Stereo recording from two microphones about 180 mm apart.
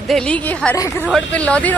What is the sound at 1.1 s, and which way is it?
Speech, 5° left (ahead or behind).